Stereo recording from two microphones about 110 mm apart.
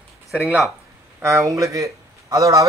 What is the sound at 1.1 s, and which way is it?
A man's voice, 25° right (ahead or behind).